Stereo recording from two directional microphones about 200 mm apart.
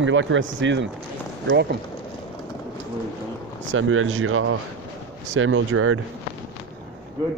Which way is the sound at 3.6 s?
80° right.